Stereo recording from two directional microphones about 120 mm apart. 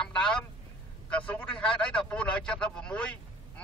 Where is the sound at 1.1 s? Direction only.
10° left (ahead or behind).